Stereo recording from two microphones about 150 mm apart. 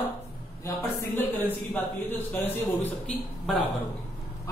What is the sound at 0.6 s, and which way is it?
Speech, 15° left (ahead or behind).